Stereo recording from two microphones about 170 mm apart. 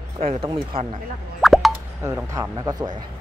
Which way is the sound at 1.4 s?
Centre (ahead or behind).